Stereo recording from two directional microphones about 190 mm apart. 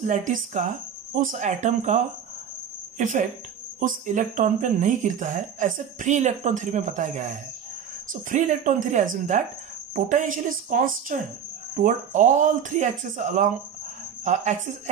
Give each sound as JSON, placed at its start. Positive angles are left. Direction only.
{"t": 0.0, "sound": "speech", "side_deg": -40}